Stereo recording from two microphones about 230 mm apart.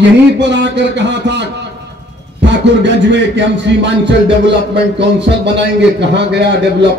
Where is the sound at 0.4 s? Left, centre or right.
Right.